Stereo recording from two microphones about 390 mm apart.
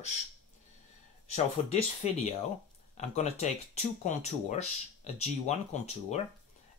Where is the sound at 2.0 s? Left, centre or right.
Centre.